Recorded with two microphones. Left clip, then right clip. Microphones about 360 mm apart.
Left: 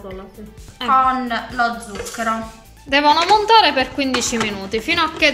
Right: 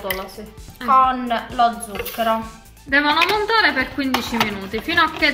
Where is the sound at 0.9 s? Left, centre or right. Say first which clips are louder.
Even; centre.